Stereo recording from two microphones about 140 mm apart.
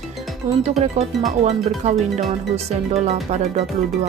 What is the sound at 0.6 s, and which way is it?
Speech, 50° right (ahead or behind).